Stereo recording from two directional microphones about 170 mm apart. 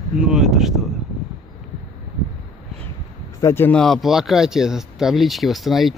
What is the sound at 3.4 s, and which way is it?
A man's voice, 15° left (ahead or behind).